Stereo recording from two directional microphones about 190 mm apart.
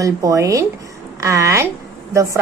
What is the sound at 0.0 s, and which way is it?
A woman's voice, 15° right (ahead or behind).